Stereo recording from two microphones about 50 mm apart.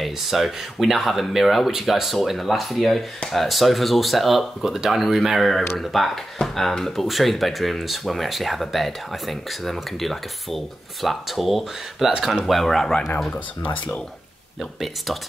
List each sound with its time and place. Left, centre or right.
0.0 s speech: centre
13.7 s speech: left
14.6 s speech: centre